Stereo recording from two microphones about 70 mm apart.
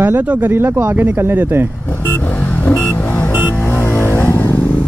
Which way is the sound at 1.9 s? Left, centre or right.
Left.